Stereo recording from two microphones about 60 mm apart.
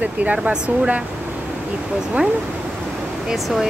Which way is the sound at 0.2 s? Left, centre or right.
Right.